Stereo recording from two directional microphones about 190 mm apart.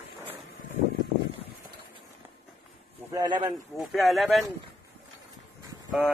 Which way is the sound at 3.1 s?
20° right (ahead or behind).